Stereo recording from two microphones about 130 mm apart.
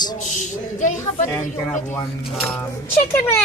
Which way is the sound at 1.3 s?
15° left (ahead or behind).